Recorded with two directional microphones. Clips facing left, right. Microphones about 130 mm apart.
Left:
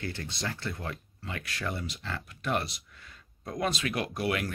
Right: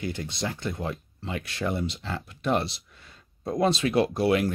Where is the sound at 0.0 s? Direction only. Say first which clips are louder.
Right 5 dB; 15° right (ahead or behind).